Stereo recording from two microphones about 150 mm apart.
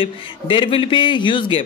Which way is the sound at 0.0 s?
35° left (ahead or behind).